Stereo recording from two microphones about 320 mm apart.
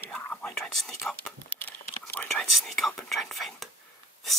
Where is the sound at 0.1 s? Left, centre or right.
Centre.